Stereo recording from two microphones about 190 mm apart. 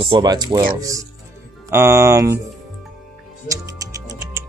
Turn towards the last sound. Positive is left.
turn(degrees=-15)  # may be behind; listen again after turning